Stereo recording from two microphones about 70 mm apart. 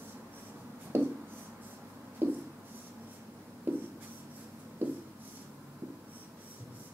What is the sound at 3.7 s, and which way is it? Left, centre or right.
Writing, right.